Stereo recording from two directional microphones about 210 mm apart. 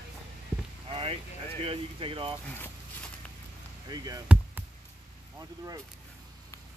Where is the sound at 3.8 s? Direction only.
20° right (ahead or behind).